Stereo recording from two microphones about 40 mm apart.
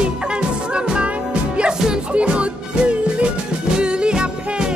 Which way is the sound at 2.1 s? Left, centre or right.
Right.